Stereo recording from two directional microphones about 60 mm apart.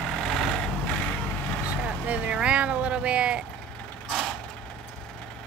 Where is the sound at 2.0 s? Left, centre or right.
Right.